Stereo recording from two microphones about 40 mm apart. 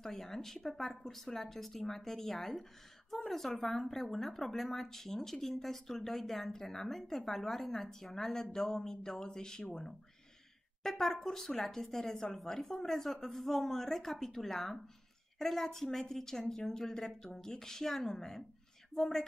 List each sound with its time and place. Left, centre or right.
0.0 s speech: centre
10.8 s speech: centre